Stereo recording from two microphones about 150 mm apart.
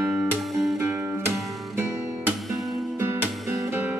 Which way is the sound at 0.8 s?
15° right (ahead or behind).